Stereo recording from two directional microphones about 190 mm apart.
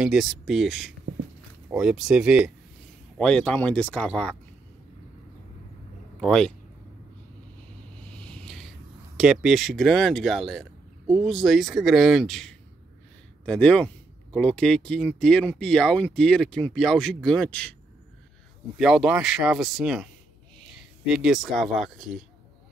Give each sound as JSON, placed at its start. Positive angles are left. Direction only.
{"t": 0.0, "sound": "speech", "side_deg": 0}
{"t": 6.2, "sound": "speech", "side_deg": 5}
{"t": 8.0, "sound": "vehicle", "side_deg": 5}
{"t": 9.1, "sound": "speech", "side_deg": 0}
{"t": 18.8, "sound": "speech", "side_deg": 0}
{"t": 21.1, "sound": "speech", "side_deg": -5}